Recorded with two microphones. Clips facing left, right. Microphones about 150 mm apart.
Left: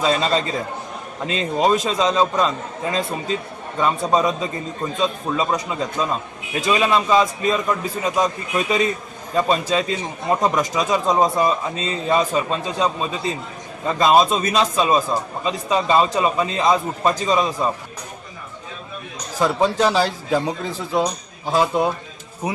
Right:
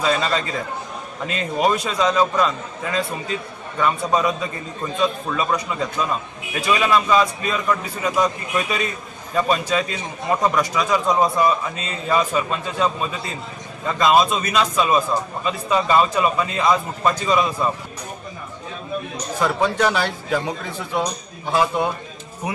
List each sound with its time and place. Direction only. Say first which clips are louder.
0.0 s a man's voice: left 2 dB; 30° left (ahead or behind)
19.4 s a man's voice: left 2 dB; 30° left (ahead or behind)
21.5 s a man's voice: left 1 dB; 25° left (ahead or behind)